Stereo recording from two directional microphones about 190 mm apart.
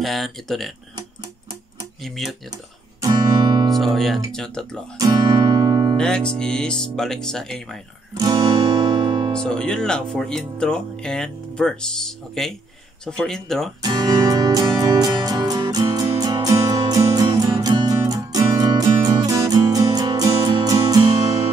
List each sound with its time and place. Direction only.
0.0 s speech: centre (ahead or behind)
2.0 s speech: centre (ahead or behind)
3.0 s guitar: 20° right (ahead or behind)
3.7 s speech: centre (ahead or behind)
4.9 s music: 20° right (ahead or behind)
5.9 s speech: 5° left (ahead or behind)
8.1 s guitar: 20° right (ahead or behind)
9.3 s speech: 5° left (ahead or behind)
13.8 s music: 20° right (ahead or behind)